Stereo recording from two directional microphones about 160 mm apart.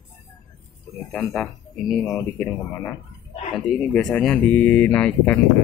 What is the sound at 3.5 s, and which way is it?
Speech, 5° left (ahead or behind).